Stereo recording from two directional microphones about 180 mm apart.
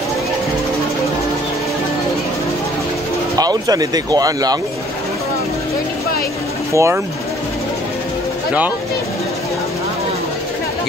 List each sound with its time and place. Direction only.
3.3 s speech: 20° right (ahead or behind)
6.7 s speech: 15° right (ahead or behind)